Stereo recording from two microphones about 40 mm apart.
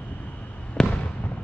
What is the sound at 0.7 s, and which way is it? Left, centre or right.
Fireworks, left.